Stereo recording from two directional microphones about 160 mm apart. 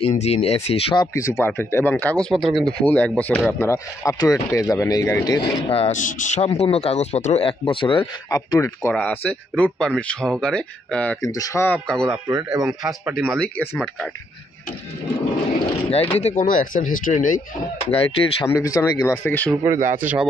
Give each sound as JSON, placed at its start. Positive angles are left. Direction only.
{"t": 0.1, "sound": "speech", "side_deg": 40}
{"t": 1.1, "sound": "speech", "side_deg": 15}
{"t": 5.7, "sound": "speech", "side_deg": 40}
{"t": 5.9, "sound": "speech", "side_deg": 55}
{"t": 11.1, "sound": "speech", "side_deg": 20}
{"t": 11.6, "sound": "speech", "side_deg": 5}
{"t": 12.1, "sound": "speech", "side_deg": -20}
{"t": 12.8, "sound": "speech", "side_deg": -5}
{"t": 15.9, "sound": "speech", "side_deg": 40}
{"t": 16.4, "sound": "speech", "side_deg": 55}
{"t": 17.9, "sound": "speech", "side_deg": 35}
{"t": 18.5, "sound": "speech", "side_deg": 20}
{"t": 19.6, "sound": "speech", "side_deg": -15}